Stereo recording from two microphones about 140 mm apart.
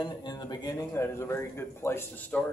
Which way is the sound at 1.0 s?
20° left (ahead or behind).